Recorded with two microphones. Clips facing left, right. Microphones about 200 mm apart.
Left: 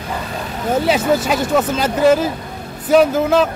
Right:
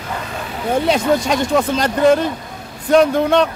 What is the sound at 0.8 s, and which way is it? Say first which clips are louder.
Speech: even; 5° left (ahead or behind).